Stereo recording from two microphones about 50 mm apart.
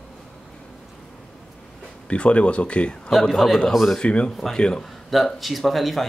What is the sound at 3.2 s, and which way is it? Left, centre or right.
Speech, centre.